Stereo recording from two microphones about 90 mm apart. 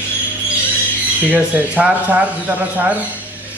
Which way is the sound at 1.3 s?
15° right (ahead or behind).